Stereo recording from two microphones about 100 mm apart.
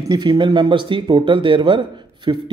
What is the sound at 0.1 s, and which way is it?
Speech, 45° right (ahead or behind).